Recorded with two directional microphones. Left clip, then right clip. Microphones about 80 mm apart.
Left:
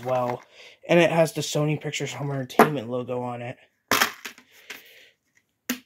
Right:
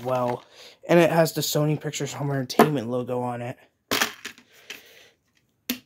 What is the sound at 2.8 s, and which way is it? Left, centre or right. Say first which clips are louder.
Speech: right 2 dB; right.